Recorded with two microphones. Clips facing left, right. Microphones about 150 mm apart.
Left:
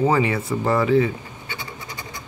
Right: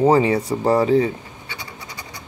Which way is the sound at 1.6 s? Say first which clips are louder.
Left 1 dB; 35° right (ahead or behind).